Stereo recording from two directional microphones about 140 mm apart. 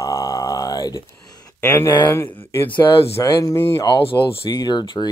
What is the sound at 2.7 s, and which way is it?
Speech, 35° left (ahead or behind).